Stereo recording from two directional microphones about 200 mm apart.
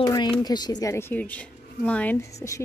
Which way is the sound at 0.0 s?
20° left (ahead or behind).